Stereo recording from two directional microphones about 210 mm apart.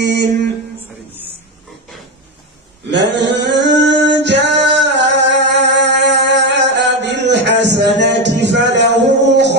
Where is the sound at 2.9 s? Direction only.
55° right (ahead or behind).